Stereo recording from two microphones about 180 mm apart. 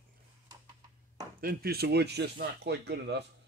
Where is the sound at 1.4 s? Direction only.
55° right (ahead or behind).